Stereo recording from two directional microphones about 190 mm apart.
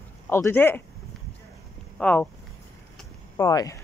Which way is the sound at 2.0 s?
5° left (ahead or behind).